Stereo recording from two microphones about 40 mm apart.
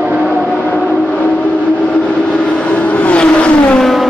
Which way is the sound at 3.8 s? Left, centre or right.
Centre.